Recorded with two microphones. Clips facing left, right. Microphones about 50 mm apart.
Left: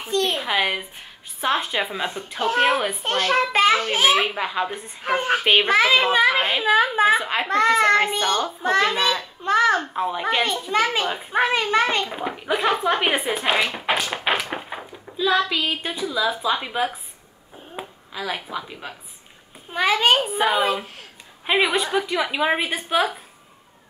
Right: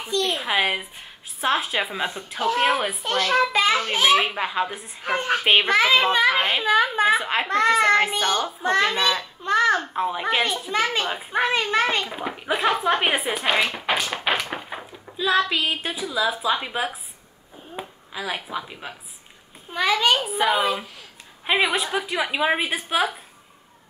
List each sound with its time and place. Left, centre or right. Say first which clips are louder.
0.3 s a child's voice: even; centre
3.0 s a child's voice: even; left
3.7 s a child's voice: left 1 dB; centre
5.0 s a woman's voice: left 2 dB; centre
5.4 s a child's voice: even; centre
19.7 s a woman's voice: left 1 dB; centre
20.2 s a child's voice: left 1 dB; centre